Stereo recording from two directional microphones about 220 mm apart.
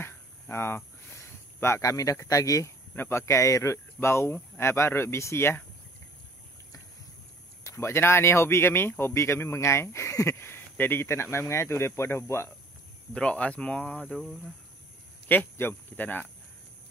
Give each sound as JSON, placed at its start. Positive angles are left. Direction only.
{"t": 0.0, "sound": "speech", "side_deg": 10}
{"t": 7.6, "sound": "speech", "side_deg": 10}